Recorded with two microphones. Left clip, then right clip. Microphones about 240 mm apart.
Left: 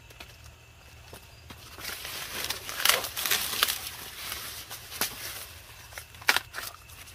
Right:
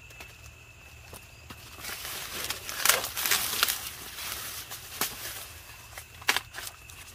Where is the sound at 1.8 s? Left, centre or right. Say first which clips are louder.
Left 1 dB; centre.